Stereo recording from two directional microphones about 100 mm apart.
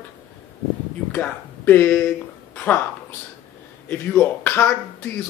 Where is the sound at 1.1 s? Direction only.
20° left (ahead or behind).